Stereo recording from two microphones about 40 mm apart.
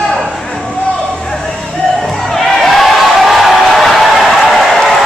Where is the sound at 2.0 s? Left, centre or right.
Centre.